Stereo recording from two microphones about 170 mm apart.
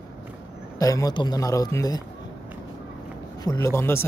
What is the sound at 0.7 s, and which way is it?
A man's voice, 20° left (ahead or behind).